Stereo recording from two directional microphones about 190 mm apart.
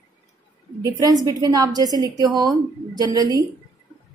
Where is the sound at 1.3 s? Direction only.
20° right (ahead or behind).